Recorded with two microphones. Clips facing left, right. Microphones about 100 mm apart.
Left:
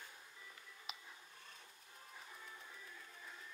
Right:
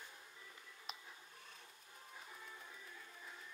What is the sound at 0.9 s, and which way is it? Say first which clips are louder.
Cat: right 1 dB; centre (ahead or behind).